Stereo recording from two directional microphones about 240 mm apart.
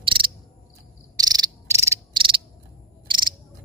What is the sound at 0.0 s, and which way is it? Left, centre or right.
Cricket, right.